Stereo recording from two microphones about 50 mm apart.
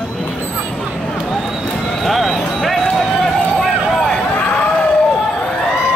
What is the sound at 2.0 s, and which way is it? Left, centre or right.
Clip-clop, centre.